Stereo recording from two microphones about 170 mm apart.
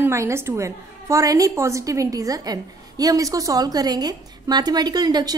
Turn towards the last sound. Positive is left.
turn(degrees=-25)  # may be behind; listen again after turning